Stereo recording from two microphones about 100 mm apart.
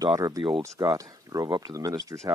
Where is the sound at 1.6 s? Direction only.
35° right (ahead or behind).